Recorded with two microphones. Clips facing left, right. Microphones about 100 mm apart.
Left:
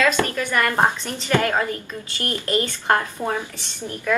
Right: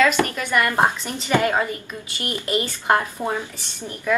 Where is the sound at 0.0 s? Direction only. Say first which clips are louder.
Right 1 dB; 15° right (ahead or behind).